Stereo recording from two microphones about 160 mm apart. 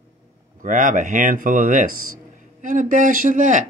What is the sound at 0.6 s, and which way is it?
Speech, 55° right (ahead or behind).